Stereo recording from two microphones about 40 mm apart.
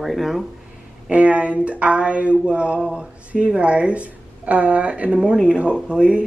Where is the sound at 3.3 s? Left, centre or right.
Right.